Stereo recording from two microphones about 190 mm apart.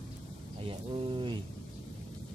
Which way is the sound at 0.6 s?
30° right (ahead or behind).